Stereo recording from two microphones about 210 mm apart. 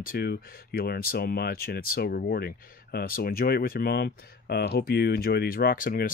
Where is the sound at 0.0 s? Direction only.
45° left (ahead or behind).